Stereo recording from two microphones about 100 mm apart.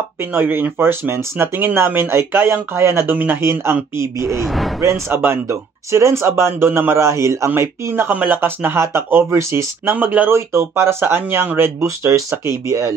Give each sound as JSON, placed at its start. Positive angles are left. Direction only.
{"t": 0.2, "sound": "speech", "side_deg": -20}
{"t": 4.3, "sound": "speech", "side_deg": 0}
{"t": 4.7, "sound": "speech", "side_deg": -30}